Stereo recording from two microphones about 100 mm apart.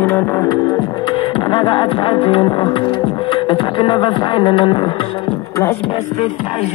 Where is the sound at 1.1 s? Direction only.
55° left (ahead or behind).